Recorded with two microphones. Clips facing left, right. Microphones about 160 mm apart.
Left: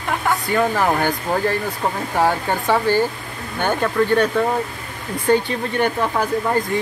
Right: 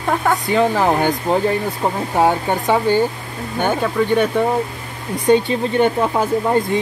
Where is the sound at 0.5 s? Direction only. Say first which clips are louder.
Right 3 dB; 25° right (ahead or behind).